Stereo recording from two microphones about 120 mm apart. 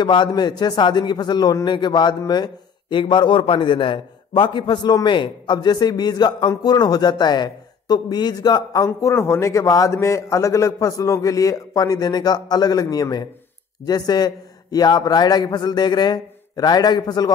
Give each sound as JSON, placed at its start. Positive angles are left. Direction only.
{"t": 0.0, "sound": "a man's voice", "side_deg": 40}